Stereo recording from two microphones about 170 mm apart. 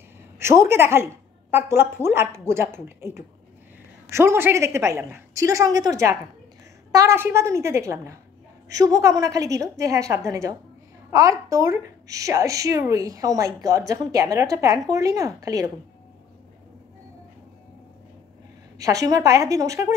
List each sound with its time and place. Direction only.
0.4 s a woman's voice: 15° right (ahead or behind)
18.8 s a woman's voice: 20° right (ahead or behind)